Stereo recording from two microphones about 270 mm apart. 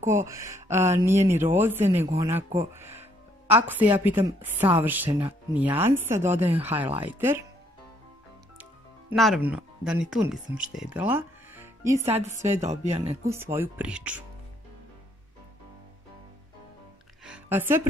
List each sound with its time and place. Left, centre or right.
0.0 s speech: centre
9.1 s speech: centre
12.6 s speech: right
13.2 s speech: centre
17.2 s music: centre